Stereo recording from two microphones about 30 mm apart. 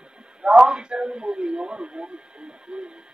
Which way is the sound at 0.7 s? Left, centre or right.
Right.